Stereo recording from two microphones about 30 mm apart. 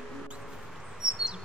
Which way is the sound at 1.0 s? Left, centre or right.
Right.